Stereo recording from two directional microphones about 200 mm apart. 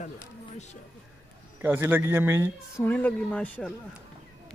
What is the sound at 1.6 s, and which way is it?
Speech, 10° right (ahead or behind).